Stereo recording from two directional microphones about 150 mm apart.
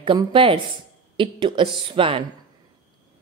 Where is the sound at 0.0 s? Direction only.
35° right (ahead or behind).